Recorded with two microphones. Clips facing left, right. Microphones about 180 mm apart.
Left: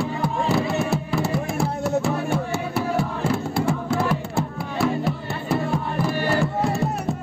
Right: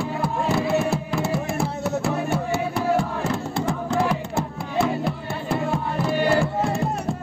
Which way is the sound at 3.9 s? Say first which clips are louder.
Even; 15° right (ahead or behind).